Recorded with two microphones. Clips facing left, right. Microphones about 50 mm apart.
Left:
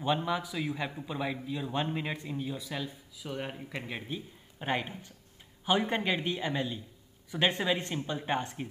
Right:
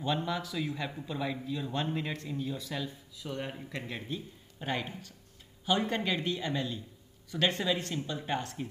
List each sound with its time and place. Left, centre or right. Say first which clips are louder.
0.0 s a man's voice: left 2 dB; centre